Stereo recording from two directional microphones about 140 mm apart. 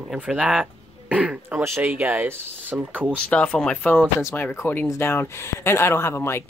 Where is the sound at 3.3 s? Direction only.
10° left (ahead or behind).